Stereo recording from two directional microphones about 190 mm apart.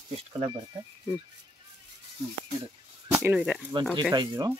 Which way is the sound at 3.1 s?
10° right (ahead or behind).